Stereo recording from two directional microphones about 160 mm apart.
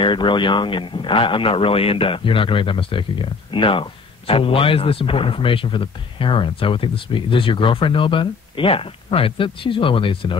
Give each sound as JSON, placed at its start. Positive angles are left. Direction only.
{"t": 0.0, "sound": "speech", "side_deg": 30}